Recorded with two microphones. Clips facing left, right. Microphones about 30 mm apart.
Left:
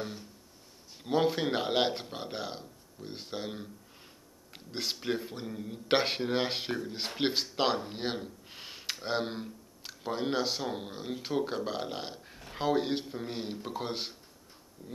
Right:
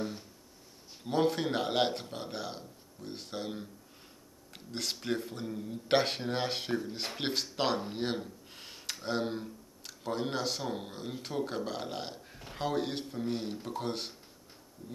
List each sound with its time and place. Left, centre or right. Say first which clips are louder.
1.0 s speech: left 1 dB; centre